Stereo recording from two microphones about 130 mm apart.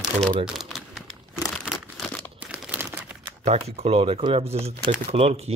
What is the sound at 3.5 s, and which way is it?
Speech, 50° right (ahead or behind).